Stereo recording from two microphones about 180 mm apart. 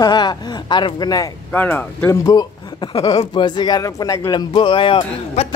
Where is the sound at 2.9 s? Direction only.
35° left (ahead or behind).